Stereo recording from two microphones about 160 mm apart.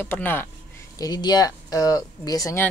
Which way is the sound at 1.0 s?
25° left (ahead or behind).